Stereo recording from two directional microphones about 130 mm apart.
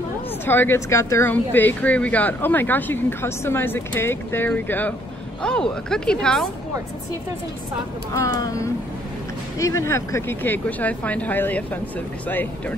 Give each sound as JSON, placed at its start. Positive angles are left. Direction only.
{"t": 0.5, "sound": "a woman's voice", "side_deg": 15}
{"t": 8.4, "sound": "a woman's voice", "side_deg": 30}